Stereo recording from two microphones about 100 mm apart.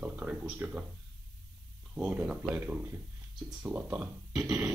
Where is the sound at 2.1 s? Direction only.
15° right (ahead or behind).